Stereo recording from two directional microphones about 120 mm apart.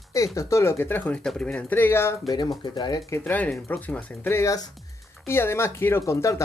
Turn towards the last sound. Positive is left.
turn(degrees=25)  # may be behind; listen again after turning